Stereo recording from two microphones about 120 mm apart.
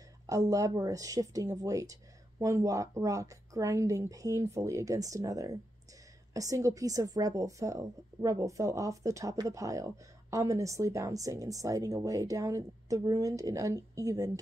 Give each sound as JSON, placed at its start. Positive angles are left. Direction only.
{"t": 0.3, "sound": "a woman's voice", "side_deg": -30}